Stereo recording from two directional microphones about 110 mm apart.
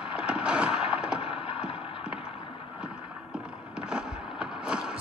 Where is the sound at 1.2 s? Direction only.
65° left (ahead or behind).